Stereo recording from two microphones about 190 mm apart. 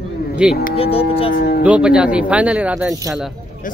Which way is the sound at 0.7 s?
30° left (ahead or behind).